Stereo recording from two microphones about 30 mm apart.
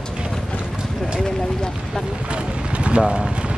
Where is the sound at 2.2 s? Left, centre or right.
Right.